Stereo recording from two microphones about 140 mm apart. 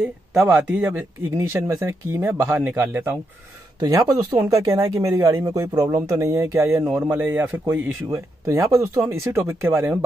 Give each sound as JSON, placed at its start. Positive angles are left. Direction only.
{"t": 0.0, "sound": "speech", "side_deg": -5}
{"t": 3.8, "sound": "speech", "side_deg": -25}